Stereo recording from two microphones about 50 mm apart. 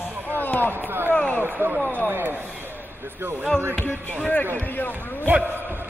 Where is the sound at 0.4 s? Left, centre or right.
Left.